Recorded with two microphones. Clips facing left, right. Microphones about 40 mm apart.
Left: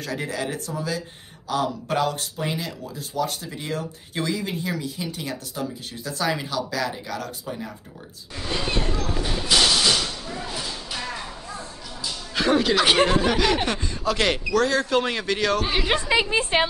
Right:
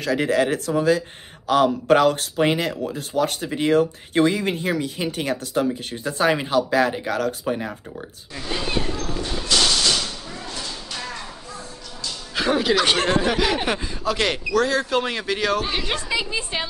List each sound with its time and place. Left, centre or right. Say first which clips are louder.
0.0 s speech: right 8 dB; right
6.1 s speech: right 6 dB; right
8.5 s a sound: right 1 dB; centre
12.4 s speech: even; centre
16.1 s a woman's voice: left 4 dB; left